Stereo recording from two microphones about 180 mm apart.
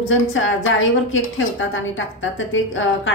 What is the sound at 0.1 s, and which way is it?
Speech, 90° left.